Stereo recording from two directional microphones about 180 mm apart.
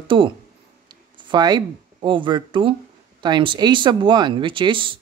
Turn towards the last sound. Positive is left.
turn(degrees=-25)  # may be behind; listen again after turning